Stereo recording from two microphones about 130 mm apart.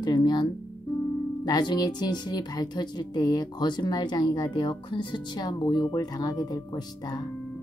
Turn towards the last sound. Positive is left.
turn(degrees=30)  # may be behind; listen again after turning